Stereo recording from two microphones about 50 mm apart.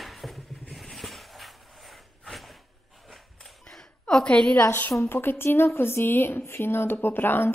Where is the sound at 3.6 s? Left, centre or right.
Centre.